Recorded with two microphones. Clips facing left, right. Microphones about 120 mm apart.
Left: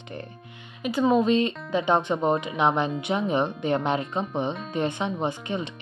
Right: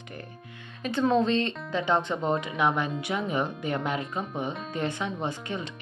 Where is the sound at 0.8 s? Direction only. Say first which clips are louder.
Left 3 dB; 10° left (ahead or behind).